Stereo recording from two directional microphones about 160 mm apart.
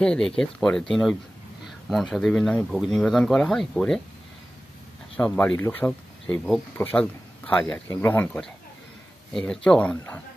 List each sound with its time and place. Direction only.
0.0 s speech: 5° left (ahead or behind)
5.1 s speech: 5° left (ahead or behind)